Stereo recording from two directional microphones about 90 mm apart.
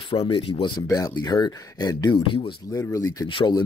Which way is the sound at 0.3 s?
75° left (ahead or behind).